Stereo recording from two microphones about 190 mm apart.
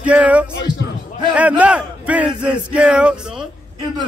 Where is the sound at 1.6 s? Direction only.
5° right (ahead or behind).